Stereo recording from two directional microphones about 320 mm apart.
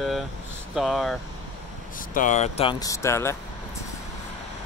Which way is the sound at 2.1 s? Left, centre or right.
Left.